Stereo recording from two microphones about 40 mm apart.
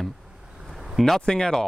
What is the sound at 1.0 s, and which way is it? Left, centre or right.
Speech, centre.